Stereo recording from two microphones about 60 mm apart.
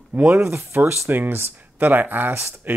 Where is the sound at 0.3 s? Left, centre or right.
Right.